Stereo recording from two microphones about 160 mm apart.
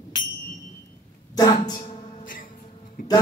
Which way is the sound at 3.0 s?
60° left (ahead or behind).